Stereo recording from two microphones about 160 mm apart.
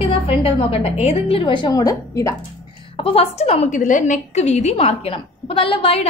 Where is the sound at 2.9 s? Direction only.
35° left (ahead or behind).